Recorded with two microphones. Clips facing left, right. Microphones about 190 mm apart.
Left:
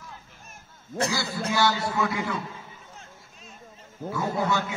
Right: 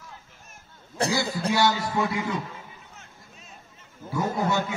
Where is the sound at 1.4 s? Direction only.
25° right (ahead or behind).